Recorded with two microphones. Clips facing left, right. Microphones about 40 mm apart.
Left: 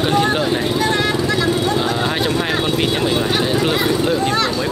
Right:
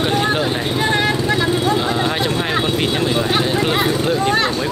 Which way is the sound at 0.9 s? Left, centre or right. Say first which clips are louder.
Right 1 dB; centre.